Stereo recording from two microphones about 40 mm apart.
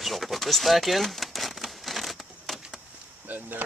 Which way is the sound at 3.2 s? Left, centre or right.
Right.